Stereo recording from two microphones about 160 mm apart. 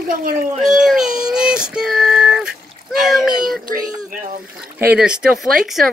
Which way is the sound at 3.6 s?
60° right (ahead or behind).